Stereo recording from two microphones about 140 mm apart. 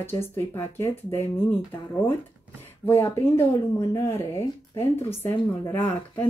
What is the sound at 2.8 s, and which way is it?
Speech, 20° left (ahead or behind).